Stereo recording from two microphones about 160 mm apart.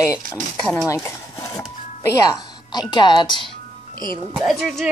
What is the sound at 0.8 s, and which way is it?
Speech, 20° left (ahead or behind).